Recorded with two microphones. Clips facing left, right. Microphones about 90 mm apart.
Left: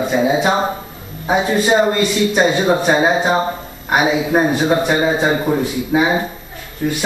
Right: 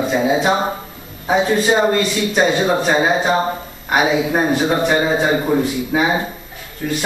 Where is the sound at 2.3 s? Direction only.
5° left (ahead or behind).